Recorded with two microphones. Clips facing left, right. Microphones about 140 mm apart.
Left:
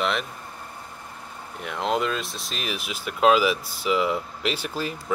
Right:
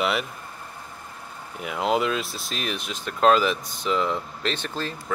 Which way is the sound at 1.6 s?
5° right (ahead or behind).